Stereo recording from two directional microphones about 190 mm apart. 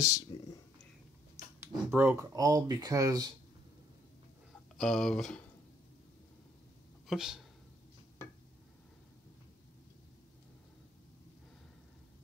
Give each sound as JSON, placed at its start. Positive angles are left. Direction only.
{"t": 0.3, "sound": "speech", "side_deg": 25}
{"t": 1.6, "sound": "speech", "side_deg": -10}
{"t": 4.7, "sound": "speech", "side_deg": 0}
{"t": 7.1, "sound": "speech", "side_deg": 0}